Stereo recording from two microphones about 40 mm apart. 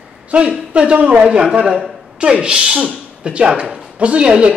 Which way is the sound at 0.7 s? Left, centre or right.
Right.